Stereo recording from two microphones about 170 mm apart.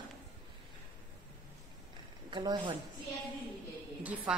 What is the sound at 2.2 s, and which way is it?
Speech, 25° right (ahead or behind).